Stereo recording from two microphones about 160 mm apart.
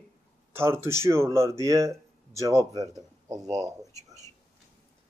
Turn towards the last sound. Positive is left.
turn(degrees=-20)  # may be behind; listen again after turning